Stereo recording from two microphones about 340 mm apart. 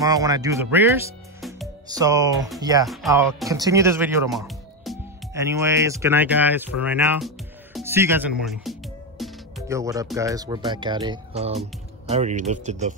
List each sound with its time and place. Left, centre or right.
0.0 s speech: centre
2.9 s speech: centre; by 12.9 s right